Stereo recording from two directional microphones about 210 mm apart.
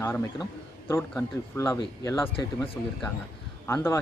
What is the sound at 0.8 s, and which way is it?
Speech, 10° left (ahead or behind).